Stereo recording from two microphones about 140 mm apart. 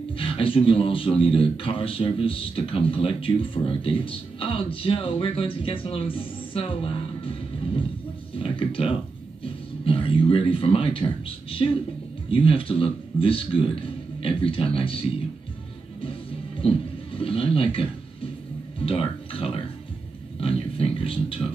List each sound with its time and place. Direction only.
0.2 s speech: 40° left (ahead or behind)
8.4 s speech: 40° left (ahead or behind)
16.5 s speech: 40° left (ahead or behind)
18.9 s speech: 40° left (ahead or behind)